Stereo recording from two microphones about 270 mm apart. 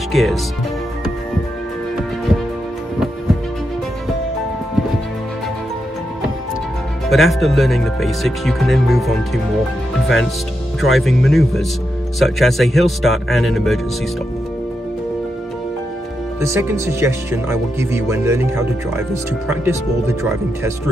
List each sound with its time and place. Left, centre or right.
0.1 s speech: centre
7.1 s speech: centre
16.3 s speech: centre